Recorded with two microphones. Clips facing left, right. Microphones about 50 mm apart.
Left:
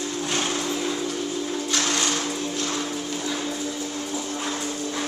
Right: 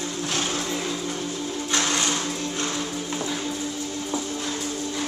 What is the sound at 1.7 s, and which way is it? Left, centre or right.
Printer, centre.